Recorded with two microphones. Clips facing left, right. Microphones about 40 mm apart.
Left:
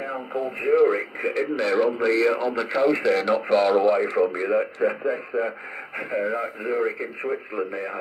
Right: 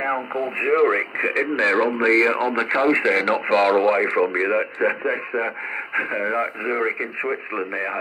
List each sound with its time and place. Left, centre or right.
0.3 s speech: right